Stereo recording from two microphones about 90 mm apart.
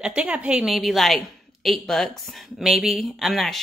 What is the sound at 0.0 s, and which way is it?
Speech, 10° right (ahead or behind).